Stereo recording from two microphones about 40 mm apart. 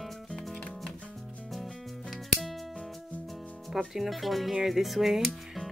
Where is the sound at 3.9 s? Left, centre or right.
Centre.